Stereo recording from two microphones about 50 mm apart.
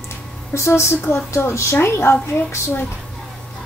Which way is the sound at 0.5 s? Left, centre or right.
Left.